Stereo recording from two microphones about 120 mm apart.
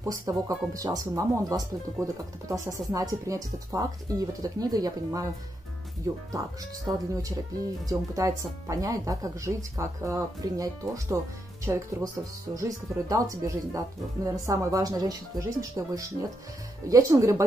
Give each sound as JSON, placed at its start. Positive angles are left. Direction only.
{"t": 0.0, "sound": "speech", "side_deg": -30}